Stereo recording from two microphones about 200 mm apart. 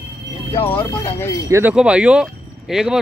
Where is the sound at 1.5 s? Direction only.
5° right (ahead or behind).